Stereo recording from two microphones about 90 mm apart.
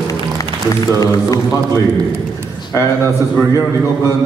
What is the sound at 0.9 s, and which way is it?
Speech, 40° left (ahead or behind).